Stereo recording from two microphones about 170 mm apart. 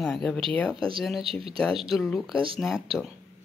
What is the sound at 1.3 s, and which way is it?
Speech, 35° right (ahead or behind).